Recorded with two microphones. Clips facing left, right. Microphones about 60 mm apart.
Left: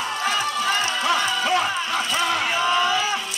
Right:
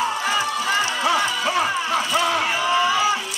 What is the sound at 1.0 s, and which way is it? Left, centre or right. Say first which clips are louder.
Music: even; centre.